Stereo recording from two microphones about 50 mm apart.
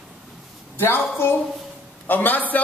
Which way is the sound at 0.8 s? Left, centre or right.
Left.